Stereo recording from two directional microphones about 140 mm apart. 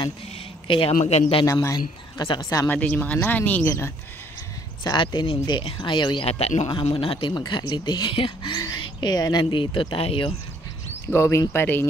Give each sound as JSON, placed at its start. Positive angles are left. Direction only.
{"t": 0.7, "sound": "speech", "side_deg": 40}
{"t": 0.9, "sound": "speech", "side_deg": 50}
{"t": 1.4, "sound": "a woman's voice", "side_deg": 25}
{"t": 2.7, "sound": "speech", "side_deg": 10}
{"t": 4.8, "sound": "speech", "side_deg": 30}
{"t": 6.2, "sound": "speech", "side_deg": 45}
{"t": 6.7, "sound": "speech", "side_deg": 35}
{"t": 11.1, "sound": "speech", "side_deg": 20}